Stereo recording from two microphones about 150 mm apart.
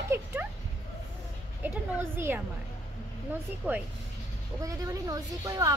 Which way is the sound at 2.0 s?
15° right (ahead or behind).